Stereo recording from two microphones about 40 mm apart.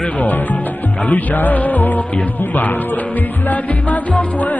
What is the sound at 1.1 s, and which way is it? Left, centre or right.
Music, left.